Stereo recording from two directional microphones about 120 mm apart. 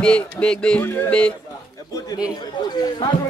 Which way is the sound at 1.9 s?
30° left (ahead or behind).